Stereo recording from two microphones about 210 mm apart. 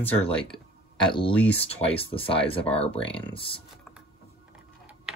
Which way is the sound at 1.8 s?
25° left (ahead or behind).